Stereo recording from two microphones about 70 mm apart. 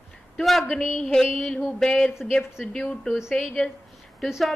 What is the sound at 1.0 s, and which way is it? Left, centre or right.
A woman's voice, centre.